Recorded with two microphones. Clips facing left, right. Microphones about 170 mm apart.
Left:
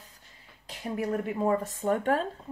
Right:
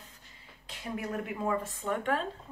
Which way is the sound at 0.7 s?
35° left (ahead or behind).